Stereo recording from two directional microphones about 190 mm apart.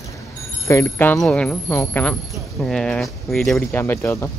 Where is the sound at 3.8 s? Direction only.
10° left (ahead or behind).